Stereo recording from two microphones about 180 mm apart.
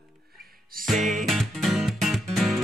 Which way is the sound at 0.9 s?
45° right (ahead or behind).